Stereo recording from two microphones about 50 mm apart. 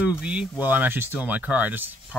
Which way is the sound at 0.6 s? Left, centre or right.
Right.